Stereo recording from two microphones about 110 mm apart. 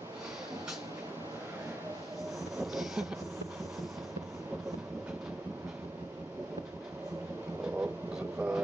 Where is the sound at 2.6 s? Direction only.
Centre (ahead or behind).